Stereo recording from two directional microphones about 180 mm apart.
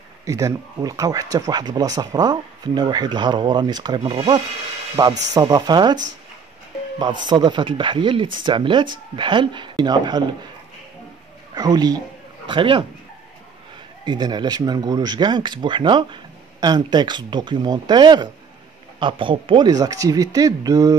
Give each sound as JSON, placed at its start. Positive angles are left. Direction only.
{"t": 0.2, "sound": "speech", "side_deg": -20}
{"t": 7.0, "sound": "speech", "side_deg": -25}
{"t": 11.5, "sound": "a man's voice", "side_deg": -20}
{"t": 14.0, "sound": "speech", "side_deg": -25}